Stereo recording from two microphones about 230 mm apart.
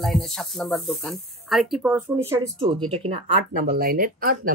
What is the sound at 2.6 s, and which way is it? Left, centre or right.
Speech, right.